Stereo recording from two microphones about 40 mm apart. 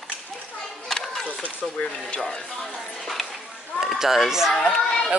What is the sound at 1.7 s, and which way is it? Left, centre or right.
Speech, centre.